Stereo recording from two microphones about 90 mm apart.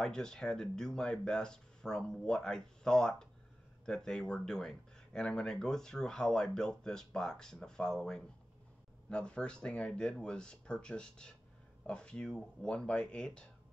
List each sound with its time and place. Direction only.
0.0 s speech: 10° left (ahead or behind)